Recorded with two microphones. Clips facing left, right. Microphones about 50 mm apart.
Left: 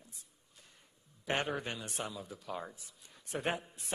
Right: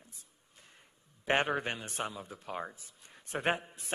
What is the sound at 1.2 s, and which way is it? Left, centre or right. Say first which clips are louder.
A man's voice: right 5 dB; right.